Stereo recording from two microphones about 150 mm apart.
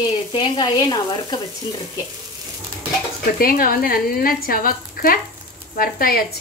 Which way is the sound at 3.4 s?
75° left (ahead or behind).